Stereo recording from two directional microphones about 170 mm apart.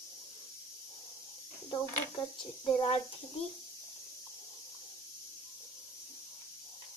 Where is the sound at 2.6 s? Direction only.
30° left (ahead or behind).